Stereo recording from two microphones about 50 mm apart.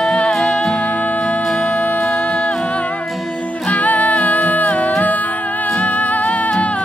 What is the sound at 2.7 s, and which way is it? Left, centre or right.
Music, left.